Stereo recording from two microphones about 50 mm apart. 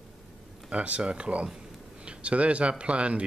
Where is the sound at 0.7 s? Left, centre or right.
Right.